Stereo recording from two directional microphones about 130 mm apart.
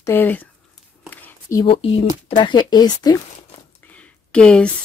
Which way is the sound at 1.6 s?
45° left (ahead or behind).